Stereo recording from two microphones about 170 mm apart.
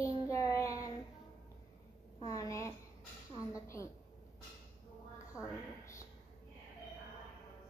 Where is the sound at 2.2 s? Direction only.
20° left (ahead or behind).